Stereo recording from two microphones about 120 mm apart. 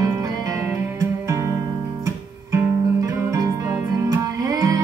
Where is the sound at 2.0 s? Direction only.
25° right (ahead or behind).